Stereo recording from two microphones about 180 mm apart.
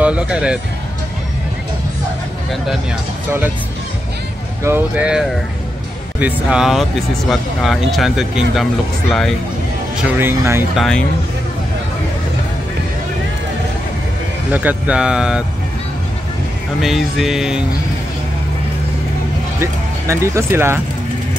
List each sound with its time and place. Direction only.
0.0 s speech: 5° right (ahead or behind)
3.3 s speech: 10° right (ahead or behind)
4.6 s speech: 10° right (ahead or behind)
9.9 s speech: 10° right (ahead or behind)
10.8 s speech: 5° left (ahead or behind)
14.5 s speech: 10° right (ahead or behind)
16.8 s speech: centre (ahead or behind)
19.6 s speech: 15° right (ahead or behind)